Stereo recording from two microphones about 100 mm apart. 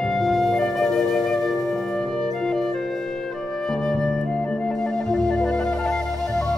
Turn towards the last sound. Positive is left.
turn(degrees=5)  # may be behind; listen again after turning